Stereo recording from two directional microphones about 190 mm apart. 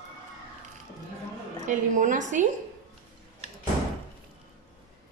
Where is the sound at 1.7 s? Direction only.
40° right (ahead or behind).